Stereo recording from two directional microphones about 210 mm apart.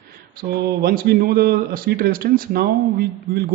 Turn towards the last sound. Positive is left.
turn(degrees=-45)  # may be behind; listen again after turning